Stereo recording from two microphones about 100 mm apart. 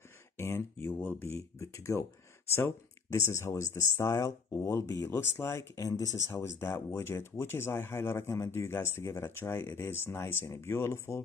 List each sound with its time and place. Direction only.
0.4 s speech: 25° left (ahead or behind)